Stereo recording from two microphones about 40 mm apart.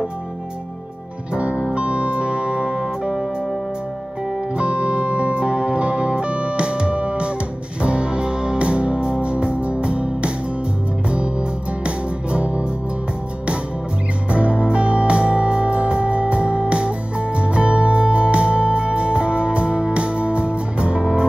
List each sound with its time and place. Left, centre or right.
1.3 s music: right
4.6 s music: right
11.8 s music: right
14.3 s music: right